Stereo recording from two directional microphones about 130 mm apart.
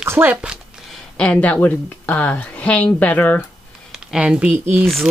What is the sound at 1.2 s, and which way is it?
Speech, 10° left (ahead or behind).